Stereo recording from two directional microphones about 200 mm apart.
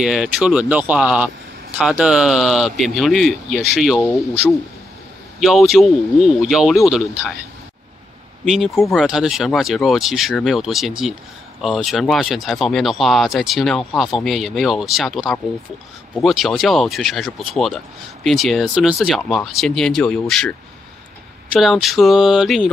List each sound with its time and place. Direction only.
0.0 s speech: 5° right (ahead or behind)
5.4 s speech: centre (ahead or behind)
8.5 s speech: centre (ahead or behind)
21.5 s speech: centre (ahead or behind)